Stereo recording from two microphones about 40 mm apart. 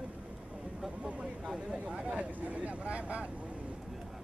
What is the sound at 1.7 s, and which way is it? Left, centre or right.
Speech, right.